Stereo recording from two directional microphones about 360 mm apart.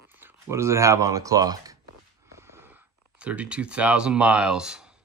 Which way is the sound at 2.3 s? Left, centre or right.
Centre.